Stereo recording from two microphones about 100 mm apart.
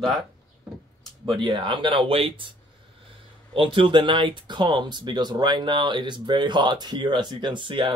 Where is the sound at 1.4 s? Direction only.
55° right (ahead or behind).